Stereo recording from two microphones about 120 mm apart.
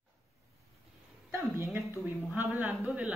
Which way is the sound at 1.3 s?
20° right (ahead or behind).